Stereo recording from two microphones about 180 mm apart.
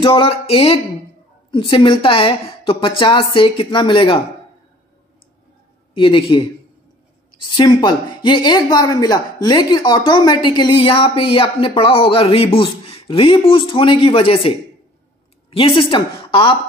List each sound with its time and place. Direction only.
0.0 s music: 30° left (ahead or behind)
1.5 s speech: 30° left (ahead or behind)
5.9 s speech: 30° left (ahead or behind)
15.5 s speech: 30° left (ahead or behind)